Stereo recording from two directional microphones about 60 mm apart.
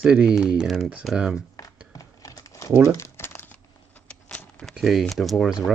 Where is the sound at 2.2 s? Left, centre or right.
Left.